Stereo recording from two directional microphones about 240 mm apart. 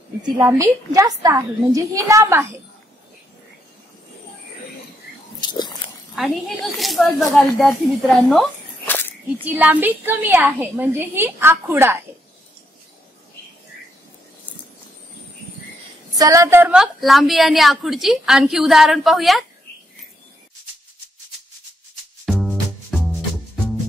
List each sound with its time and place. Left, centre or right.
0.4 s a woman's voice: centre
5.4 s biting: centre
6.1 s a woman's voice: centre
8.3 s a sound: centre
9.4 s a woman's voice: centre
16.2 s a woman's voice: centre
22.2 s music: centre